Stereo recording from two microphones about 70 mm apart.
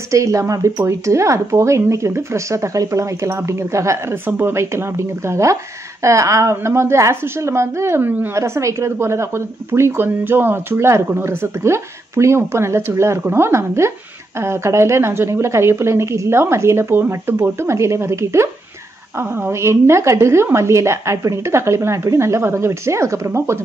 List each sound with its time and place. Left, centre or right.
0.1 s speech: right
4.1 s speech: right
8.4 s speech: right